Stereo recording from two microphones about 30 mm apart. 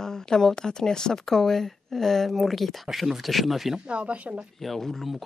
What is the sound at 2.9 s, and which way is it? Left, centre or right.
Speech, centre.